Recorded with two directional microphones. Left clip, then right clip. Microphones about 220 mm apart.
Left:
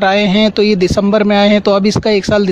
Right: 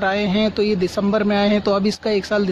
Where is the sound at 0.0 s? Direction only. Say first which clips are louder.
Left 8 dB; 40° left (ahead or behind).